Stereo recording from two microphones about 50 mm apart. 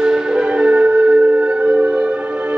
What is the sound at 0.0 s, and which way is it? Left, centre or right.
Music, centre.